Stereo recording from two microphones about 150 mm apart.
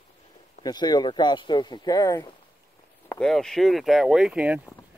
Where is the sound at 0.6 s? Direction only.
25° left (ahead or behind).